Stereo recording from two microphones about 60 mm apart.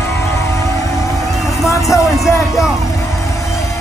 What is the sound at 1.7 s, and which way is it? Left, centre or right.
Music, left.